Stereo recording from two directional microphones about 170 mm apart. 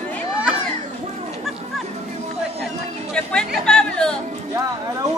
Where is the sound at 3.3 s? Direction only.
5° left (ahead or behind).